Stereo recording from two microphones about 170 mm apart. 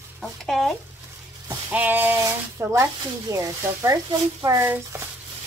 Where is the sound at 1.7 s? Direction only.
10° right (ahead or behind).